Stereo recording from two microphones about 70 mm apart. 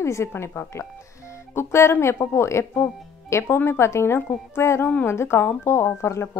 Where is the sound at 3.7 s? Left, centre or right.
Left.